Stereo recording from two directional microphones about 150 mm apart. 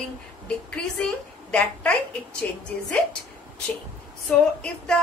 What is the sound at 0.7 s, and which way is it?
A woman's voice, 5° left (ahead or behind).